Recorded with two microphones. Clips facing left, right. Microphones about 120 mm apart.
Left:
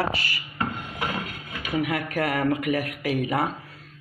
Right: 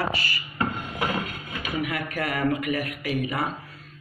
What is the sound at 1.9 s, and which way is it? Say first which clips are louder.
Speech: left 3 dB; 80° left.